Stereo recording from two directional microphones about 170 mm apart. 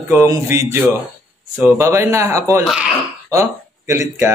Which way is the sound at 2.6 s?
5° right (ahead or behind).